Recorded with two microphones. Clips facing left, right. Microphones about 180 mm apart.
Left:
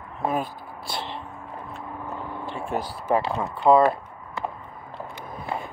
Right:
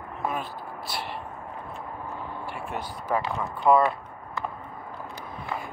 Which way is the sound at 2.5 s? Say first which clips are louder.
Left 8 dB; 35° left (ahead or behind).